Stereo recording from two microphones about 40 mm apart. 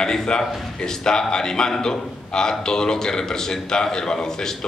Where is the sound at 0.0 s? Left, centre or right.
Centre.